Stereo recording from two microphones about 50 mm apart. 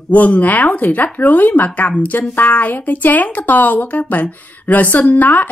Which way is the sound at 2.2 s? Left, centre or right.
Left.